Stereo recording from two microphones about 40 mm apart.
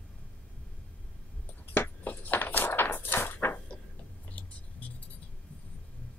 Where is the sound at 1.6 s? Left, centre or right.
Left.